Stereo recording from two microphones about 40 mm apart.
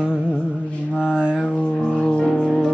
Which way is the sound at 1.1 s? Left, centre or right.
Right.